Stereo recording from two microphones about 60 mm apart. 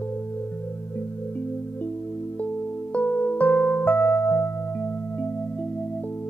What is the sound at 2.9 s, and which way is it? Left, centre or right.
Music, left.